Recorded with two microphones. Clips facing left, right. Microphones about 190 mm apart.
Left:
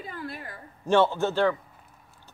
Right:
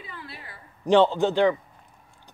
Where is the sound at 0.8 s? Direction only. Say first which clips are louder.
Right 3 dB; 15° right (ahead or behind).